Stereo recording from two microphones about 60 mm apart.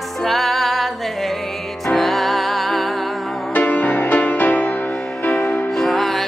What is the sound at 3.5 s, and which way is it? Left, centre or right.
Music, left.